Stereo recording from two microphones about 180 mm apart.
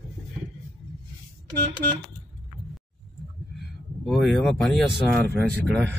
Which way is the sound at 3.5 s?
Centre (ahead or behind).